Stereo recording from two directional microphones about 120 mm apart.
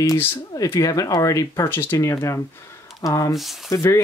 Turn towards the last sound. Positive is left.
turn(degrees=25)  # may be behind; listen again after turning